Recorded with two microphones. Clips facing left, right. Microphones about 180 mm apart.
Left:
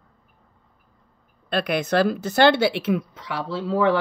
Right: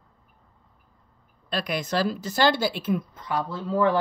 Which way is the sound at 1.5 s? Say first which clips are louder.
Left 5 dB; 60° left (ahead or behind).